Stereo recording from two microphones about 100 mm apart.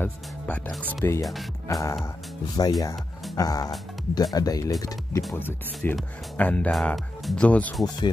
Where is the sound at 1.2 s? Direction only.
Centre (ahead or behind).